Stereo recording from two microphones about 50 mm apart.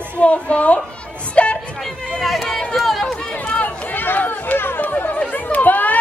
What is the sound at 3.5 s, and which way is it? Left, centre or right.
Chatter, left.